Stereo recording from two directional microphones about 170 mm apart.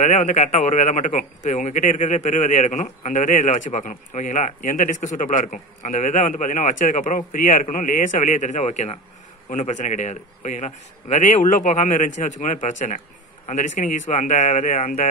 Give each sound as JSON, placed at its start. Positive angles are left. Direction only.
{"t": 0.0, "sound": "a man's voice", "side_deg": 45}